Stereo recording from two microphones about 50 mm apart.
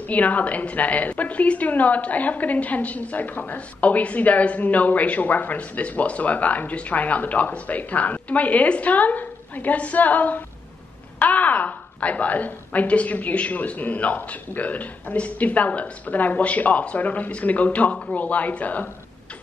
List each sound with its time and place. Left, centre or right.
0.0 s a woman's voice: left